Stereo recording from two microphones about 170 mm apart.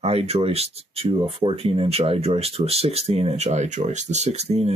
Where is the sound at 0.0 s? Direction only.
35° right (ahead or behind).